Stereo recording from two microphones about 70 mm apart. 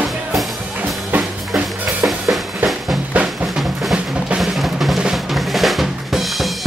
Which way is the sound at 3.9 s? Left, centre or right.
Centre.